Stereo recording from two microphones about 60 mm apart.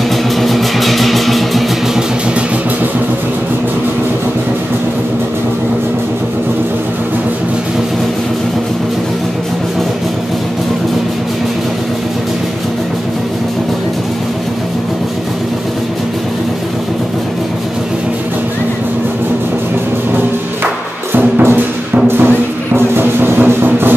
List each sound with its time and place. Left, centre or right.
0.4 s vehicle: centre
21.1 s music: right